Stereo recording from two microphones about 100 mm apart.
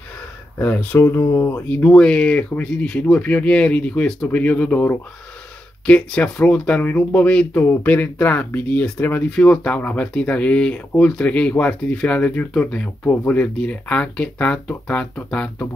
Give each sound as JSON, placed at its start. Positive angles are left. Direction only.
{"t": 0.6, "sound": "speech", "side_deg": 20}
{"t": 1.7, "sound": "speech", "side_deg": 15}